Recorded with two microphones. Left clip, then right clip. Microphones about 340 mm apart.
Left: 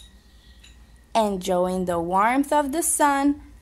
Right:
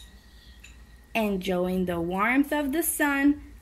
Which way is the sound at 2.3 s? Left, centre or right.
Centre.